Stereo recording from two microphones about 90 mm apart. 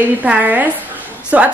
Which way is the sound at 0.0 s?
20° right (ahead or behind).